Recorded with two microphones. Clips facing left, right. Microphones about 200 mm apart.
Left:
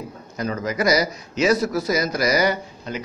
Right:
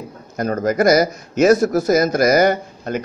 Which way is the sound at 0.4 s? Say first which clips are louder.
Right 7 dB; 50° right (ahead or behind).